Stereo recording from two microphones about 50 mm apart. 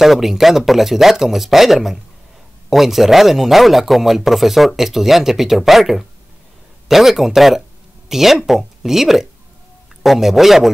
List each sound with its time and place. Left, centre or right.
0.0 s a man's voice: centre